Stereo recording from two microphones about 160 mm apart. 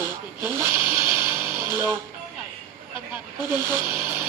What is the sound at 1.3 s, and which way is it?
Music, 15° right (ahead or behind).